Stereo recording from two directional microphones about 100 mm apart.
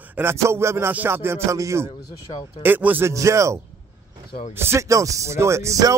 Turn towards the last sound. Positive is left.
turn(degrees=-30)  # may be behind; listen again after turning